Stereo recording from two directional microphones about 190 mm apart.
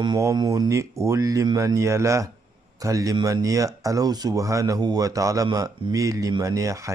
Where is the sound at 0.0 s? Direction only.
20° right (ahead or behind).